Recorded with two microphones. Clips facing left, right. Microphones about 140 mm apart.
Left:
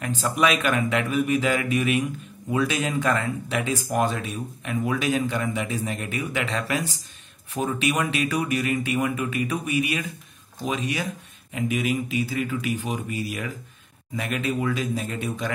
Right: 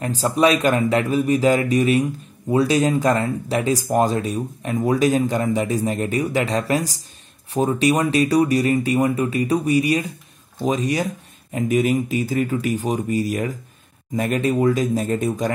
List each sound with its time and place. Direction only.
0.0 s speech: 35° right (ahead or behind)